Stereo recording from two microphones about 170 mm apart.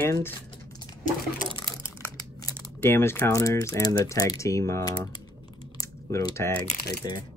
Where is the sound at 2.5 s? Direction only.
15° left (ahead or behind).